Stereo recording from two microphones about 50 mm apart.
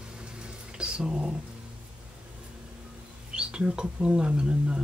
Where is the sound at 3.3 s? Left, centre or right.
Centre.